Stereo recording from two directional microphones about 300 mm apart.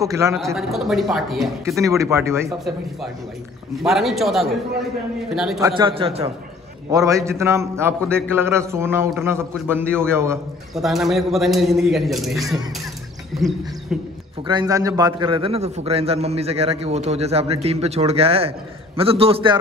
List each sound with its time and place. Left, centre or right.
0.0 s a man's voice: centre
5.6 s a man's voice: centre
14.5 s a man's voice: centre